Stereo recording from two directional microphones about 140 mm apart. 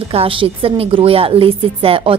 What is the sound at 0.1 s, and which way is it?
A woman's voice, 40° right (ahead or behind).